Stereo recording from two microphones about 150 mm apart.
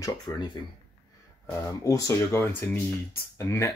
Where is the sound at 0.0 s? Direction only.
30° left (ahead or behind).